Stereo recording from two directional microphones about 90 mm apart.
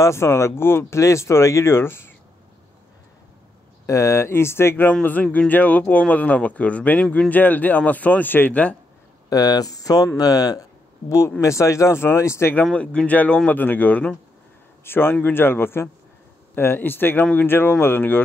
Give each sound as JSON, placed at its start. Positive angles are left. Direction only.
{"t": 0.0, "sound": "speech", "side_deg": 30}
{"t": 3.8, "sound": "speech", "side_deg": 35}
{"t": 9.3, "sound": "speech", "side_deg": 40}
{"t": 12.7, "sound": "speech", "side_deg": 15}